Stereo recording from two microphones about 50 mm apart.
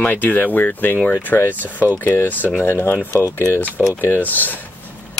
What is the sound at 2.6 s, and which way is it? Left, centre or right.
Speech, left.